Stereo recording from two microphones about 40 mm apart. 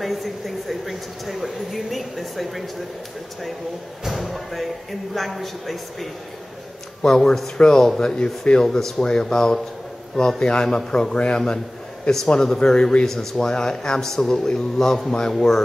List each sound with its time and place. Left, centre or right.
0.0 s speech: centre
4.0 s speech: centre
7.0 s speech: centre
8.6 s speech: centre
9.0 s a man's voice: centre